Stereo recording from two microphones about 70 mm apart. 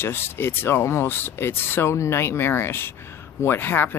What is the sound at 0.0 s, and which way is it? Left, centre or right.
Speech, left.